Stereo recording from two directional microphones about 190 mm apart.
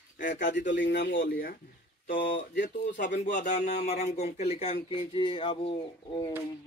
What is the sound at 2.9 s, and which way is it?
Speech, 65° left (ahead or behind).